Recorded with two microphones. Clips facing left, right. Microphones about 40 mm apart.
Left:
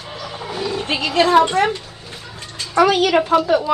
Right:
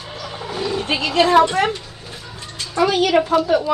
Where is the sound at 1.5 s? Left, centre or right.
Left.